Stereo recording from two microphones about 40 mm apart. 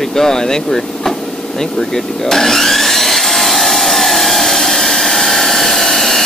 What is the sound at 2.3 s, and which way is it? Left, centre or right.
Wood, centre.